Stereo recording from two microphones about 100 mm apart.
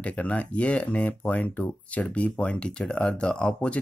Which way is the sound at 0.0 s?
15° left (ahead or behind).